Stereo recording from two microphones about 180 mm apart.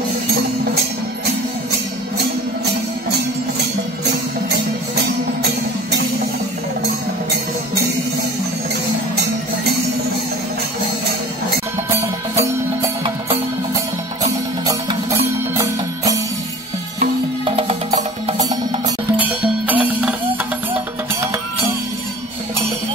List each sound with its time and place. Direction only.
11.9 s music: 15° right (ahead or behind)
14.7 s music: 20° right (ahead or behind)
17.0 s music: 35° right (ahead or behind)
18.4 s music: 20° right (ahead or behind)
19.7 s music: 5° right (ahead or behind)